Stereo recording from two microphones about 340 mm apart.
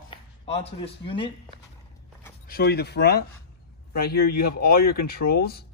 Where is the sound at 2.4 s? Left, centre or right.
Left.